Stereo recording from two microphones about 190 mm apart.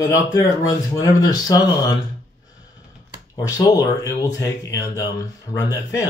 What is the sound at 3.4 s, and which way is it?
Speech, 15° left (ahead or behind).